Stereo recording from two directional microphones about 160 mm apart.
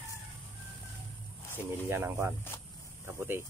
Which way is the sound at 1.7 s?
15° right (ahead or behind).